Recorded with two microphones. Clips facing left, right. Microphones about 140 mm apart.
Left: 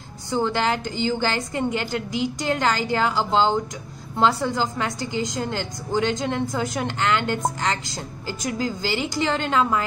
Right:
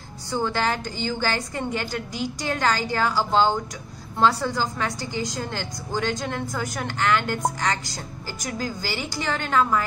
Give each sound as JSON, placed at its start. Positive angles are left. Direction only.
{"t": 0.3, "sound": "a woman's voice", "side_deg": 15}
{"t": 8.4, "sound": "a woman's voice", "side_deg": 20}